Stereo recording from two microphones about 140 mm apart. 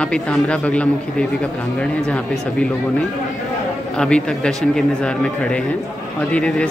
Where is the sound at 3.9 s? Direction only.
5° left (ahead or behind).